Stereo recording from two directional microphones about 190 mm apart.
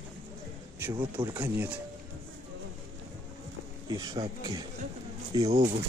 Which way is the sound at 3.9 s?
20° right (ahead or behind).